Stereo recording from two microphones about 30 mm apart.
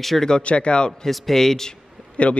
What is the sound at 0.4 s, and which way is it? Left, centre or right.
Speech, left.